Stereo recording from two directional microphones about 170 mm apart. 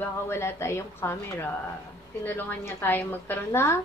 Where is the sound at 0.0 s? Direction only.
15° left (ahead or behind).